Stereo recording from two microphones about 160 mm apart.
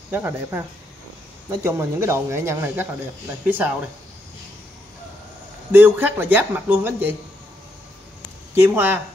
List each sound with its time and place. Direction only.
0.1 s speech: 15° right (ahead or behind)
5.7 s speech: 10° right (ahead or behind)
8.5 s speech: 15° right (ahead or behind)